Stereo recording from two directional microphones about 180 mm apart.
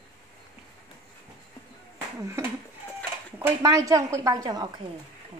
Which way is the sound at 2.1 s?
15° right (ahead or behind).